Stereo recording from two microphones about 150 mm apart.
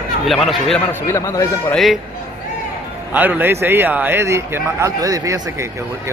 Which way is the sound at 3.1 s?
10° right (ahead or behind).